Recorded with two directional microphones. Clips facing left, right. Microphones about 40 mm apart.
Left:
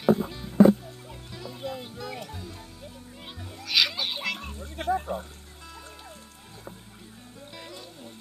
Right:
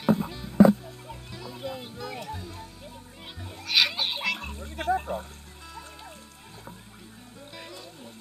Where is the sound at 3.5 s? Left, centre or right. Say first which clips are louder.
Right 1 dB; right.